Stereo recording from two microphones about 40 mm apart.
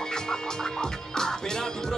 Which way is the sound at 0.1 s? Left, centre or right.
Centre.